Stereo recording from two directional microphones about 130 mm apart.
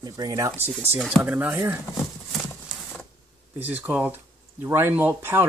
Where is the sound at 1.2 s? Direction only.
15° right (ahead or behind).